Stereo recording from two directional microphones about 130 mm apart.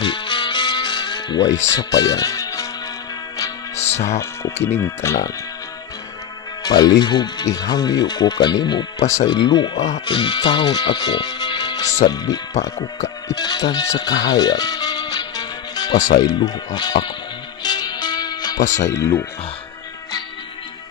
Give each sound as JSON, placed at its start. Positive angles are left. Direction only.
{"t": 0.0, "sound": "music", "side_deg": 40}
{"t": 4.6, "sound": "speech", "side_deg": 20}
{"t": 6.6, "sound": "speech", "side_deg": 30}
{"t": 17.6, "sound": "music", "side_deg": 30}
{"t": 18.6, "sound": "speech", "side_deg": 70}
{"t": 18.9, "sound": "speech", "side_deg": 20}